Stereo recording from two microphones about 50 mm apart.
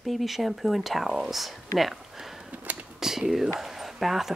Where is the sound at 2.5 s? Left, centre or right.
Right.